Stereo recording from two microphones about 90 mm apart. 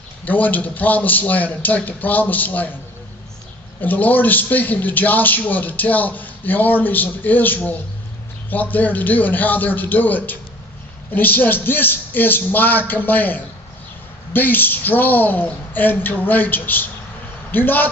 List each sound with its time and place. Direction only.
0.2 s a man's voice: 20° left (ahead or behind)
3.8 s a man's voice: 20° left (ahead or behind)